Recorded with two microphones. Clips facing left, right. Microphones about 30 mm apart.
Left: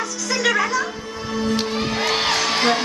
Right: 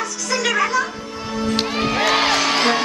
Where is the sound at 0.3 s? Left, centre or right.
Centre.